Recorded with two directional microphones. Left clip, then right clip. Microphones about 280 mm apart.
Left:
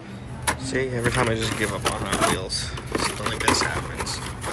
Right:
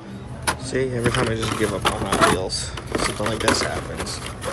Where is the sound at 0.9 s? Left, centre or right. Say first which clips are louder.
Right 1 dB; centre.